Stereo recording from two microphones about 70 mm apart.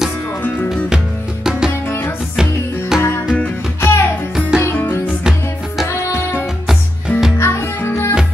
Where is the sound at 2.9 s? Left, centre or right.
Left.